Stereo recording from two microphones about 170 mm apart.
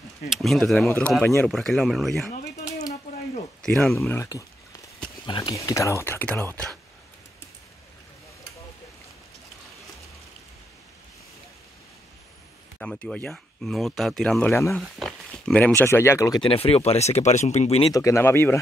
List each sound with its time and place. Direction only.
0.3 s speech: centre (ahead or behind)
3.6 s speech: 5° left (ahead or behind)
4.1 s speech: 15° left (ahead or behind)
12.7 s speech: 5° left (ahead or behind)
14.5 s speech: 15° left (ahead or behind)
14.8 s speech: centre (ahead or behind); by 16.4 s 20° left (ahead or behind)
16.4 s speech: 35° left (ahead or behind)
17.9 s speech: 15° left (ahead or behind)